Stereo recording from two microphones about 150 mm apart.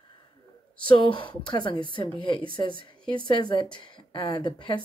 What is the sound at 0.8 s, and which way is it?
A woman's voice, 35° left (ahead or behind).